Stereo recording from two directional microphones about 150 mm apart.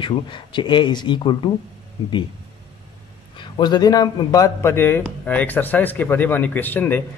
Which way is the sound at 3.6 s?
25° left (ahead or behind).